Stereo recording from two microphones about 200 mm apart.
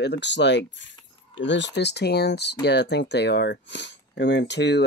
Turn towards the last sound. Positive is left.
turn(degrees=60)  # may be behind; listen again after turning